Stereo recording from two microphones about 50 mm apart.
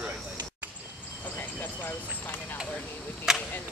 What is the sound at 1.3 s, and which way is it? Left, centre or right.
Clip-clop, left.